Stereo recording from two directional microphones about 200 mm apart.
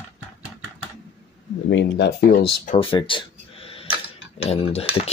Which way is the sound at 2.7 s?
25° left (ahead or behind).